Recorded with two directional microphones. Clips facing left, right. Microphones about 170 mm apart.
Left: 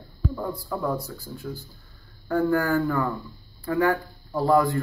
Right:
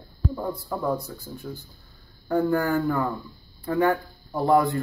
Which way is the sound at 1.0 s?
20° right (ahead or behind).